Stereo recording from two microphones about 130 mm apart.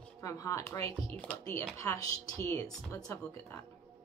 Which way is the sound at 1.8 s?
20° left (ahead or behind).